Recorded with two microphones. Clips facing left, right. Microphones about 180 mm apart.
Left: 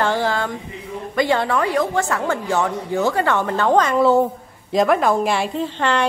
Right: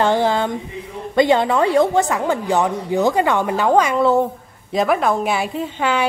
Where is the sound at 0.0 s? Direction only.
20° right (ahead or behind).